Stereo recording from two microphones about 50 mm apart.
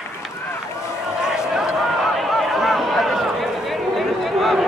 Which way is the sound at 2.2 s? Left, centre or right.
Centre.